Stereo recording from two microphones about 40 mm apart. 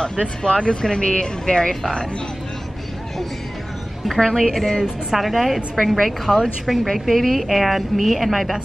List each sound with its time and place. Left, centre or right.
0.2 s speech: left
4.2 s a woman's voice: centre
5.1 s a woman's voice: centre